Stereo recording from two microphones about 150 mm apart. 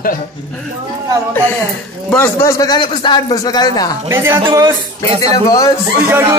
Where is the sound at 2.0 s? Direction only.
15° left (ahead or behind).